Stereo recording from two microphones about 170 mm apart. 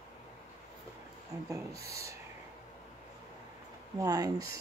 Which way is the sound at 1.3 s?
20° right (ahead or behind).